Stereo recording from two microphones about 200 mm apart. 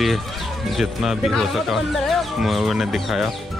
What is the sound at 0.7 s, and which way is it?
Speech, centre (ahead or behind).